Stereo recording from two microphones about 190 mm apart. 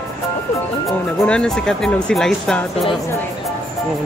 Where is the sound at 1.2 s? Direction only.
5° left (ahead or behind).